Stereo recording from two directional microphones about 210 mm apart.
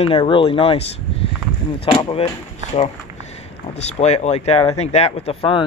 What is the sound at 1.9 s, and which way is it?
Speech, 25° left (ahead or behind).